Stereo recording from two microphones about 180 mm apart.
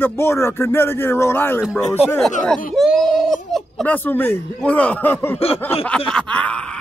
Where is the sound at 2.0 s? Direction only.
10° left (ahead or behind).